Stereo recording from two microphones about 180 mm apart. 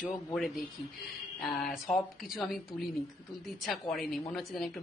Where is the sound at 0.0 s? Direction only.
5° left (ahead or behind).